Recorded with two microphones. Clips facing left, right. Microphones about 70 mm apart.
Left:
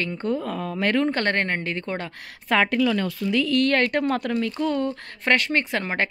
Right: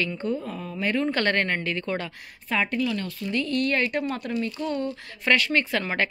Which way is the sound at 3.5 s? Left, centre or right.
Left.